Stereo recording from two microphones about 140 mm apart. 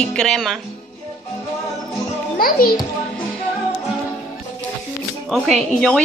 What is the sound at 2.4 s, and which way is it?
Speech, 90° left.